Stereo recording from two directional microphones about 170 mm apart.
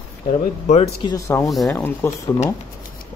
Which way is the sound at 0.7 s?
30° left (ahead or behind).